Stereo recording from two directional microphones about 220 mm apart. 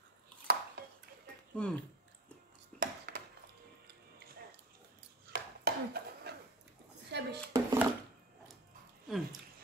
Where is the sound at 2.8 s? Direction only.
50° right (ahead or behind).